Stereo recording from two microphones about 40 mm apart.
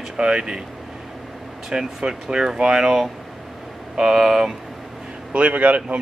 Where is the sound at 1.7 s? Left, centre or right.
Centre.